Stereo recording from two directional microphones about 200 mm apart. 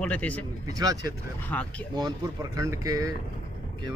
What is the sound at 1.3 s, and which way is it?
Speech, 5° left (ahead or behind).